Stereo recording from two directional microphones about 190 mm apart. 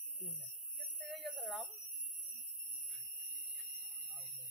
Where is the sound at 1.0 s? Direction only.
Centre (ahead or behind).